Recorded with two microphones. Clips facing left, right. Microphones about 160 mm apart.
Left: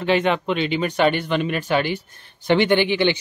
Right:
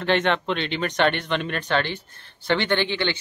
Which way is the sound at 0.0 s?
5° left (ahead or behind).